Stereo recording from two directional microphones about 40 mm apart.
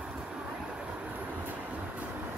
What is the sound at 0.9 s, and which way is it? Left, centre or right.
Train, right.